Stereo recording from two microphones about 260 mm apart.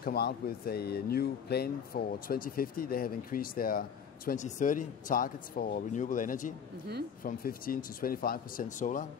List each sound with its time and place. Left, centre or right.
0.0 s speech: left